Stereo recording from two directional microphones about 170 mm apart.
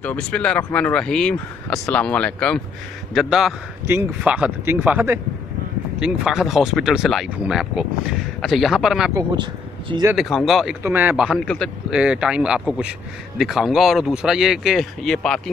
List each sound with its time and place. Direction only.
0.0 s speech: 10° left (ahead or behind)
9.1 s speech: 25° right (ahead or behind)
10.1 s speech: centre (ahead or behind)
11.2 s speech: 5° left (ahead or behind)